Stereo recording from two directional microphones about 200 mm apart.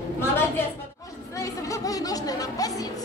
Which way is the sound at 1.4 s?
15° left (ahead or behind).